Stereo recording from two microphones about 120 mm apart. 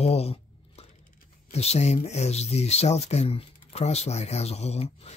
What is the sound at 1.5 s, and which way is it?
Speech, 60° left (ahead or behind).